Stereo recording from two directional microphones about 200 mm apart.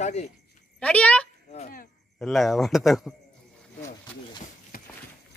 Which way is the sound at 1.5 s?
40° left (ahead or behind).